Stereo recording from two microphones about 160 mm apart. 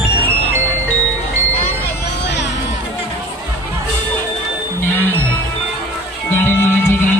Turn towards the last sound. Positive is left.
turn(degrees=15)  # may be behind; listen again after turning